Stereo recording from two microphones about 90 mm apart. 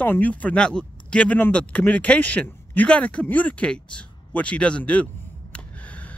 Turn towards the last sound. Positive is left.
turn(degrees=15)  # may be behind; listen again after turning